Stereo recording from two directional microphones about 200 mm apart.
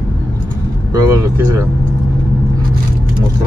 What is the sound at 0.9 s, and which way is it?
Speech, 20° right (ahead or behind).